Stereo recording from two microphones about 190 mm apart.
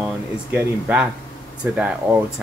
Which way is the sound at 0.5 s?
5° right (ahead or behind).